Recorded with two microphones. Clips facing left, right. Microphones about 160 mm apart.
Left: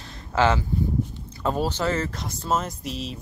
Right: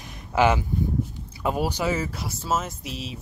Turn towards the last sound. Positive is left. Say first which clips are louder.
# left 3 dB
turn(degrees=0)  # may be behind; listen again after turning